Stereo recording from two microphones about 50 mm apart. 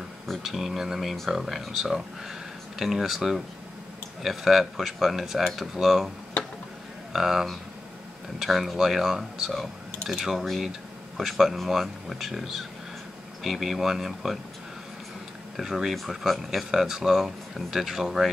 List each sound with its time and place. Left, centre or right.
0.3 s speech: centre
15.5 s speech: centre